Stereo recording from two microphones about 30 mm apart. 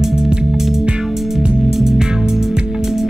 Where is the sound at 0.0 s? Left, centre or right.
Right.